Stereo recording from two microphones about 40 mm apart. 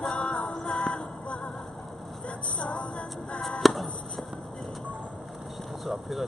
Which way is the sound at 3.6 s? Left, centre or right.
Centre.